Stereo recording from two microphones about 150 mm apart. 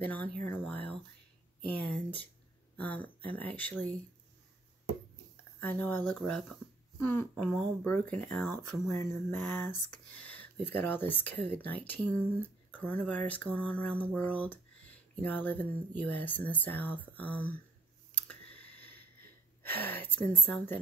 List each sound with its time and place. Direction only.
0.0 s speech: 10° left (ahead or behind)
5.6 s speech: 10° left (ahead or behind)
18.1 s clicking: 10° left (ahead or behind)
19.2 s gasp: 90° right
20.2 s speech: 10° left (ahead or behind)